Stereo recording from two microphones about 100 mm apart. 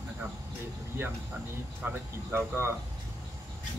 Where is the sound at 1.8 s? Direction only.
20° right (ahead or behind).